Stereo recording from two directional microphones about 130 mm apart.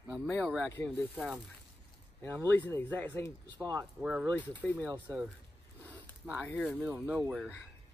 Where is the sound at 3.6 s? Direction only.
30° right (ahead or behind).